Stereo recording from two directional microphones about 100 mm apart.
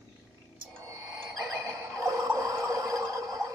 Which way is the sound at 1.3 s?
35° right (ahead or behind).